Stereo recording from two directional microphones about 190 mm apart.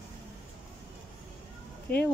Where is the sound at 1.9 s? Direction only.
10° left (ahead or behind).